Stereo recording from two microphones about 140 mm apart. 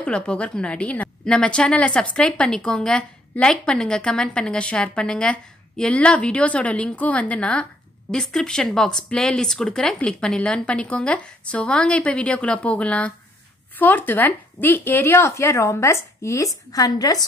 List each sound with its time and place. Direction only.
0.0 s a woman's voice: 5° left (ahead or behind); by 17.2 s 25° left (ahead or behind)